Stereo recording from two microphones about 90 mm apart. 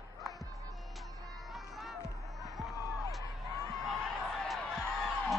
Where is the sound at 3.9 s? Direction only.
Centre (ahead or behind).